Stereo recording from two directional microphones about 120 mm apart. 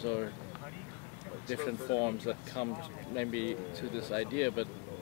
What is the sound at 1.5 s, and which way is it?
Speech, 25° left (ahead or behind).